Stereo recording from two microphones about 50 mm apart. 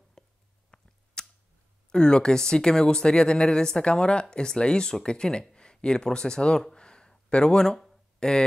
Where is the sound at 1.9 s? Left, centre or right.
Centre.